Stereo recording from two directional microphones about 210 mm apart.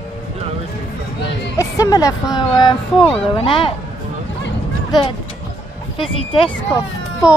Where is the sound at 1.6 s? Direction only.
15° left (ahead or behind).